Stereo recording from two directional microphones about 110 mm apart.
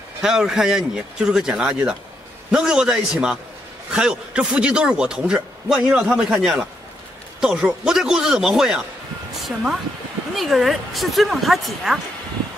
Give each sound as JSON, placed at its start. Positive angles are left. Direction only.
{"t": 0.2, "sound": "a man's voice", "side_deg": -5}
{"t": 10.3, "sound": "speech", "side_deg": 0}